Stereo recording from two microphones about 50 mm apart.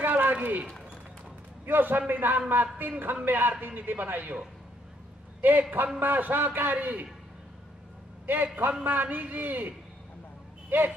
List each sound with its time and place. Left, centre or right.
0.0 s a sound: right
1.7 s a man's voice: right
5.4 s a man's voice: right
8.3 s a man's voice: right